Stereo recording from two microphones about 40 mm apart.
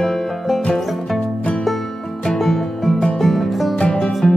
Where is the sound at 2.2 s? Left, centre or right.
Centre.